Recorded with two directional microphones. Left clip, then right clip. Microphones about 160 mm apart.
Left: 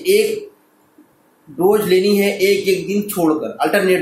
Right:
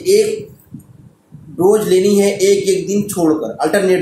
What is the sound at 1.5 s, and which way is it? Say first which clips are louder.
Speech: right 2 dB; 10° right (ahead or behind).